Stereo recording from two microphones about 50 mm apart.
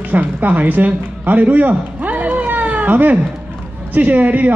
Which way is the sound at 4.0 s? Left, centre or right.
Right.